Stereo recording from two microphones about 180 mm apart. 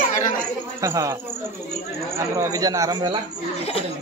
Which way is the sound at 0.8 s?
15° right (ahead or behind).